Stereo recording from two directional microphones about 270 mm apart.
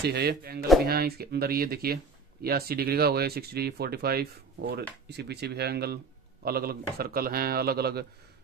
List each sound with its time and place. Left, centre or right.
0.0 s speech: right